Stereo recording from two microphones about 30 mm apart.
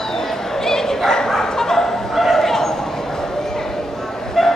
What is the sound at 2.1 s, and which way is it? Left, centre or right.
Bow-wow, centre.